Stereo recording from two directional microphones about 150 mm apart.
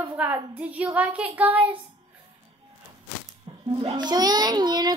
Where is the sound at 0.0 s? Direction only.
10° right (ahead or behind).